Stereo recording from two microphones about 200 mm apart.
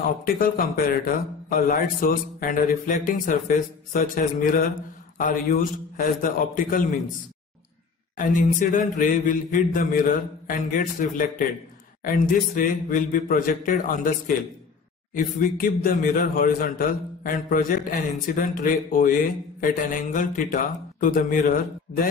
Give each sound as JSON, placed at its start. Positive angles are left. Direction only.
{"t": 0.0, "sound": "a man's voice", "side_deg": 45}
{"t": 8.2, "sound": "a man's voice", "side_deg": 40}